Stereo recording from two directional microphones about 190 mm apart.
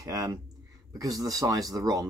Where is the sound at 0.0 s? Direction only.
20° right (ahead or behind).